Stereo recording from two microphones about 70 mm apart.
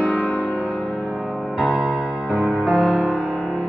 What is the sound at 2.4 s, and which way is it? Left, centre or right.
Music, centre.